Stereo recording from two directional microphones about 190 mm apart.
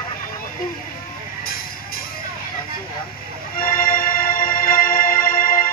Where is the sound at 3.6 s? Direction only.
50° left (ahead or behind).